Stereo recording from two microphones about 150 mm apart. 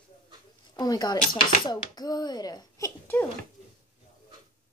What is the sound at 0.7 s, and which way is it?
A child's voice, 25° left (ahead or behind).